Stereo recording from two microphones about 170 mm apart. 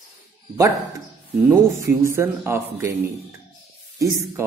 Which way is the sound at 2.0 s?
15° right (ahead or behind).